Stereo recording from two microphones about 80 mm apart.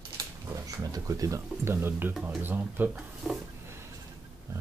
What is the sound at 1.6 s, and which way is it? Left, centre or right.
Speech, right.